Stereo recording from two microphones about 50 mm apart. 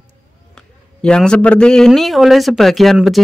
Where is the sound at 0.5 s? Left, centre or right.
Centre.